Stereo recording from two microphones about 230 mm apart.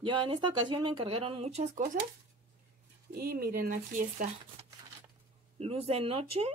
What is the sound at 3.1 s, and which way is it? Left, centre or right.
Speech, right.